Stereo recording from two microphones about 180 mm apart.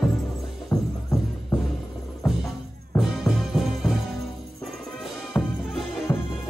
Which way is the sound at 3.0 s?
Centre (ahead or behind).